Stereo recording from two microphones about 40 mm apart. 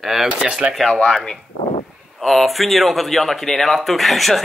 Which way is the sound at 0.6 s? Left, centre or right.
Right.